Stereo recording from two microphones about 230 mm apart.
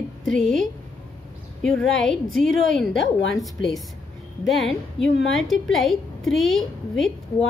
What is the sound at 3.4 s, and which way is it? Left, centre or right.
A woman's voice, centre.